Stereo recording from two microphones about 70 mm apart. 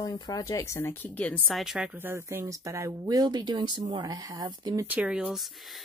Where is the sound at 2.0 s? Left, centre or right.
Right.